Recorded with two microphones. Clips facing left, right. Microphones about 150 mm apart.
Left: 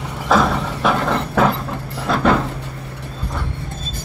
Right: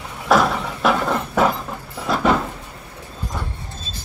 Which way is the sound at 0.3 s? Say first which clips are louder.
Even; 5° right (ahead or behind).